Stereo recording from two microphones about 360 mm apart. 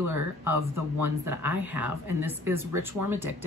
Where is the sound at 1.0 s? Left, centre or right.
Centre.